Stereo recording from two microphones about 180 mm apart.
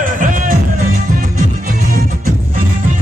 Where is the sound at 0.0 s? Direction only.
45° right (ahead or behind).